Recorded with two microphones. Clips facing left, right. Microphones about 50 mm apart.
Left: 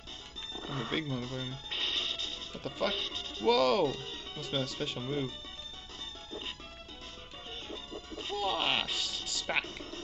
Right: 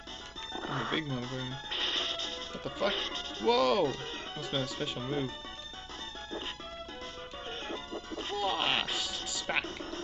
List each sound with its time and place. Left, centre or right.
0.5 s music: right
2.9 s speech: right
3.4 s speech: centre
3.8 s speech: right
4.5 s speech: centre
5.0 s speech: right
7.6 s music: right
8.9 s speech: centre
9.7 s speech: right